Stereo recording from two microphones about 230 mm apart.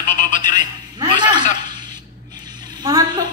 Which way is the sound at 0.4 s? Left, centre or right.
Centre.